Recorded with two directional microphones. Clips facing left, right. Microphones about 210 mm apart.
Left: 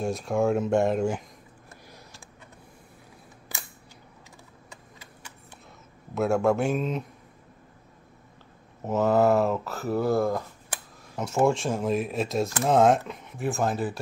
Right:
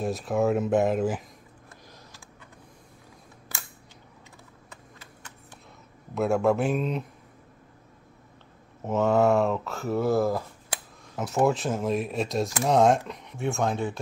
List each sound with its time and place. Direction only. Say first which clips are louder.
0.0 s speech: even; centre (ahead or behind)
6.1 s speech: even; centre (ahead or behind)
8.8 s speech: even; centre (ahead or behind)